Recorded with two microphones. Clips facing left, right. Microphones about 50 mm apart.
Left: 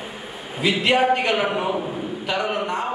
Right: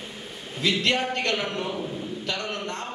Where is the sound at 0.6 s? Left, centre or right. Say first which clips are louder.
Left 6 dB; centre.